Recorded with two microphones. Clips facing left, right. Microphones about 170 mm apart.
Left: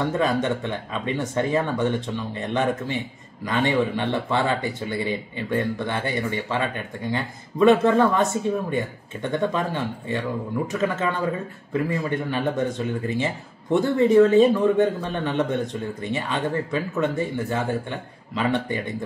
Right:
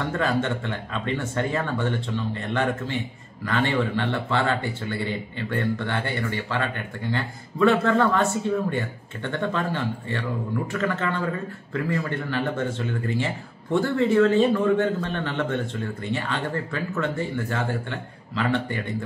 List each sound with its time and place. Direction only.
0.0 s speech: 15° left (ahead or behind)